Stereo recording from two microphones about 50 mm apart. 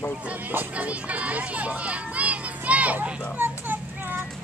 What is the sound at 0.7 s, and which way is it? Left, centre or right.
A child's voice, right.